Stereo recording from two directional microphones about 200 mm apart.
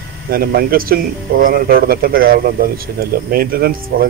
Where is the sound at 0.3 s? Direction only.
50° right (ahead or behind).